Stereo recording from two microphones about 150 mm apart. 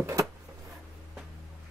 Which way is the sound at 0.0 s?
20° right (ahead or behind).